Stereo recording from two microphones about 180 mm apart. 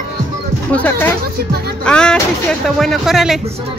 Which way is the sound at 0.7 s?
10° left (ahead or behind).